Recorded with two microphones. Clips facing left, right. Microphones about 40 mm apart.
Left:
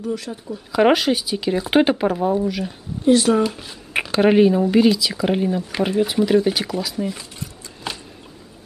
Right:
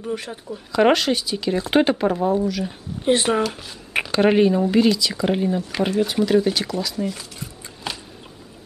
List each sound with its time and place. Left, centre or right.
0.0 s speech: right
0.7 s speech: centre
3.1 s speech: right
3.5 s speech: centre
7.3 s a sound: centre